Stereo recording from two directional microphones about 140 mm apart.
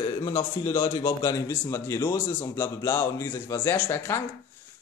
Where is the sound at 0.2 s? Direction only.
25° left (ahead or behind).